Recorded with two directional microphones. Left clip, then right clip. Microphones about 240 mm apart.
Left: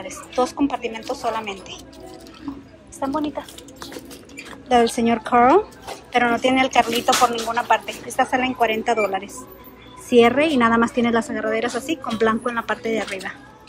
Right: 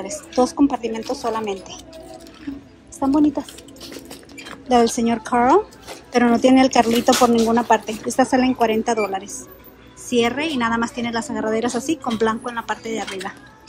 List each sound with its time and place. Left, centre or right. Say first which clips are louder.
0.4 s speech: right 3 dB; centre
3.0 s speech: right 6 dB; right
4.6 s a woman's voice: even; centre